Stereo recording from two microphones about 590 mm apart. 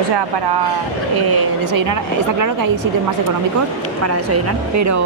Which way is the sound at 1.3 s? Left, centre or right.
Right.